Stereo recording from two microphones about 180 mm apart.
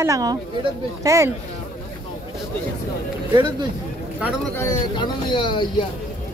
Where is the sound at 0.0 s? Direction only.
20° right (ahead or behind).